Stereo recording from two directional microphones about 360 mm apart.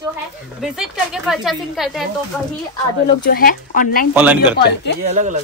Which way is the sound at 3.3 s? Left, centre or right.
Left.